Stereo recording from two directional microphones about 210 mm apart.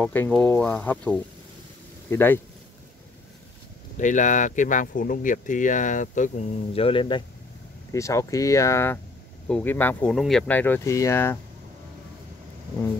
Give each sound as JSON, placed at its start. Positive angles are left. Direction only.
{"t": 0.0, "sound": "speech", "side_deg": 5}
{"t": 3.9, "sound": "speech", "side_deg": 35}